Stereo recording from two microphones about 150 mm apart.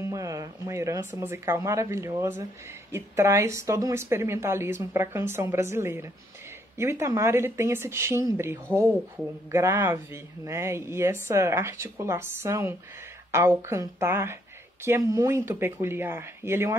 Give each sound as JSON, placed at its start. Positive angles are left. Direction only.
{"t": 0.0, "sound": "speech", "side_deg": -20}